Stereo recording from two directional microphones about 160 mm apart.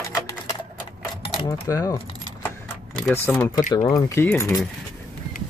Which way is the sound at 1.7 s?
20° left (ahead or behind).